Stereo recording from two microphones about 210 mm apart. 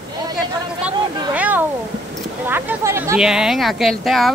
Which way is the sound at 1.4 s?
10° right (ahead or behind).